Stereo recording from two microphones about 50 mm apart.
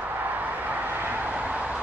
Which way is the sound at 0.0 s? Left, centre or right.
Right.